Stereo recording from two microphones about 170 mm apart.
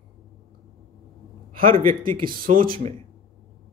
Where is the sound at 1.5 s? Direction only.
55° right (ahead or behind).